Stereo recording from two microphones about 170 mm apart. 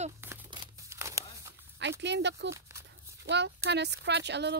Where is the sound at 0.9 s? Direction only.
15° right (ahead or behind).